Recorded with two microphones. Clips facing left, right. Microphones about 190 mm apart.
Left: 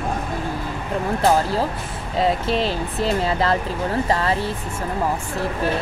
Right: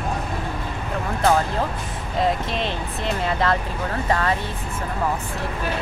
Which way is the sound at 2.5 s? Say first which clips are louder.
Left 5 dB; 35° left (ahead or behind).